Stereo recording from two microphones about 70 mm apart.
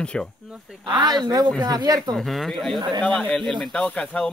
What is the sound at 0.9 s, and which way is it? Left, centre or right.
Speech, right.